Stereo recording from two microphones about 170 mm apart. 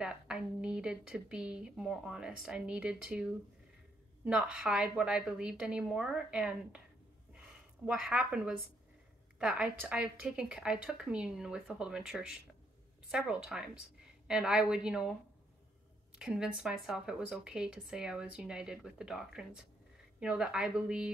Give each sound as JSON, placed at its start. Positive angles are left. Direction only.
{"t": 0.0, "sound": "a woman's voice", "side_deg": -5}
{"t": 7.8, "sound": "a woman's voice", "side_deg": -5}
{"t": 16.2, "sound": "a woman's voice", "side_deg": -5}